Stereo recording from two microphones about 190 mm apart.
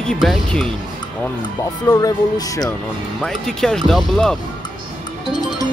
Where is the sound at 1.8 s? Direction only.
20° left (ahead or behind).